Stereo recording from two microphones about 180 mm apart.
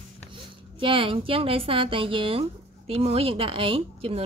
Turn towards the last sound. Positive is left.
turn(degrees=-30)  # may be behind; listen again after turning